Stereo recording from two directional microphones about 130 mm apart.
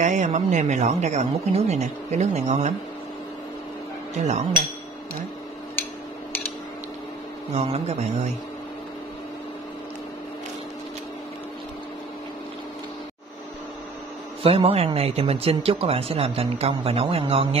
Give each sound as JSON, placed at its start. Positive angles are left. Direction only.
{"t": 0.0, "sound": "a woman's voice", "side_deg": -70}
{"t": 4.2, "sound": "a woman's voice", "side_deg": -65}
{"t": 7.5, "sound": "speech", "side_deg": -50}
{"t": 14.4, "sound": "speech", "side_deg": -50}